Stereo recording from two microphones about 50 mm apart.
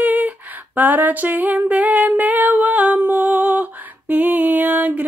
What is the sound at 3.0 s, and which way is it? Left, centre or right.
Music, right.